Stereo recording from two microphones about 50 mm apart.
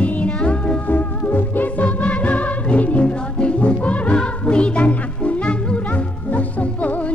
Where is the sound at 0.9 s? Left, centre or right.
Left.